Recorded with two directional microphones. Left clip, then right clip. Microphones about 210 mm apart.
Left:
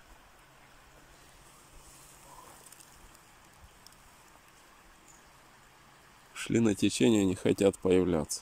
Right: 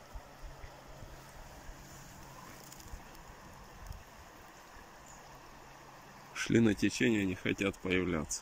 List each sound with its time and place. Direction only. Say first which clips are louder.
6.3 s speech: left 1 dB; 5° left (ahead or behind)